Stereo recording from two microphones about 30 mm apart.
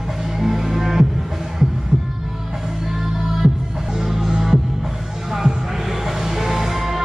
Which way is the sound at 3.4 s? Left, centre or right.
Centre.